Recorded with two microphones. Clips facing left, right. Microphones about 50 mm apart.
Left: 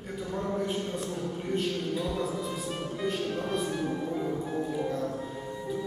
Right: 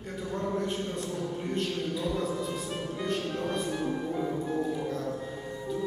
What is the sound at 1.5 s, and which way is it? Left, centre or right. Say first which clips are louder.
Speech: left 2 dB; centre.